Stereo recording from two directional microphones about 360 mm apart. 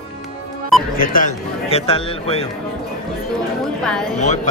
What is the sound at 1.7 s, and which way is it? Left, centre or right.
Speech, centre.